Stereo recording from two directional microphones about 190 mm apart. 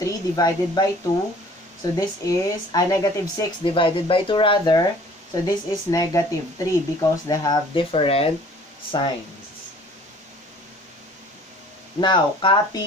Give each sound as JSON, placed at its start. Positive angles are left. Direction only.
{"t": 0.0, "sound": "speech", "side_deg": 20}
{"t": 2.0, "sound": "speech", "side_deg": 20}
{"t": 12.0, "sound": "speech", "side_deg": 25}